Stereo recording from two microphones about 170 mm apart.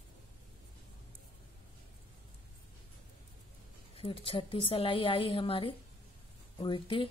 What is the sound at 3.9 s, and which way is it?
A woman's voice, 30° left (ahead or behind).